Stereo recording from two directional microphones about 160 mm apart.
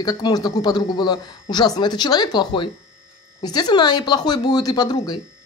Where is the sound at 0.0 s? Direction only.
25° left (ahead or behind).